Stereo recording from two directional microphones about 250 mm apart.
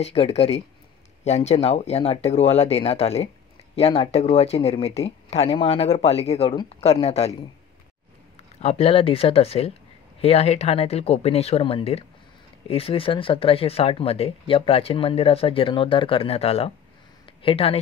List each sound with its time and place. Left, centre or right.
0.0 s speech: left
8.5 s speech: left